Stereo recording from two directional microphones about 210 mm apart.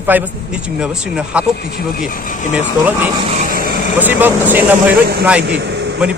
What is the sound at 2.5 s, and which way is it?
Speech, 5° right (ahead or behind).